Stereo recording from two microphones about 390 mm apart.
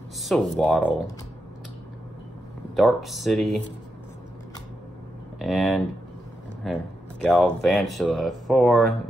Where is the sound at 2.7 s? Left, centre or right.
Centre.